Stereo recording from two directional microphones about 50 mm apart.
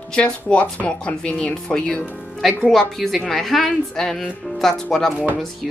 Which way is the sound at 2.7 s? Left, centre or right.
Centre.